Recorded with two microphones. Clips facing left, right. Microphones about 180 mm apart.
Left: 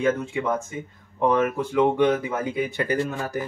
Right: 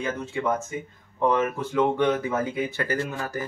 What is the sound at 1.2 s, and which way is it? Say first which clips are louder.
Speech: left 2 dB; 15° left (ahead or behind).